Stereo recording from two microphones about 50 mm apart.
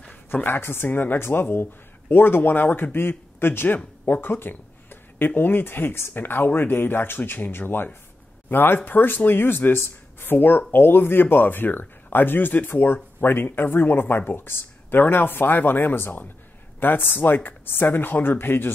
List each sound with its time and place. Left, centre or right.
0.5 s speech: left